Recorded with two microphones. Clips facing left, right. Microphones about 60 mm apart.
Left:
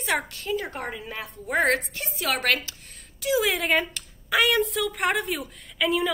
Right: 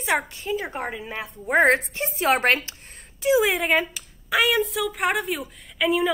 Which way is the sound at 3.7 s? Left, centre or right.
Centre.